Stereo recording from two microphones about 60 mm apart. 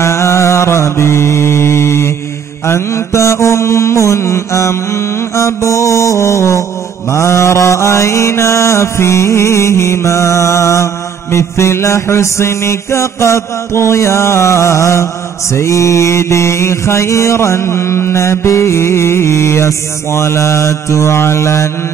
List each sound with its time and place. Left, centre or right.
0.0 s mantra: left